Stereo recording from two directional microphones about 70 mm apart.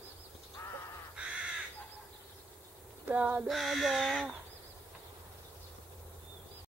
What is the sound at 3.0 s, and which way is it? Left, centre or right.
Child singing, right.